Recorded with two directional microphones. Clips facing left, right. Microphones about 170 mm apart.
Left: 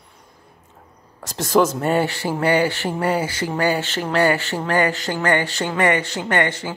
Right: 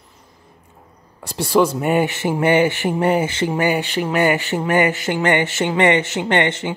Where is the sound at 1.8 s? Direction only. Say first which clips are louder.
Right 2 dB; 15° right (ahead or behind).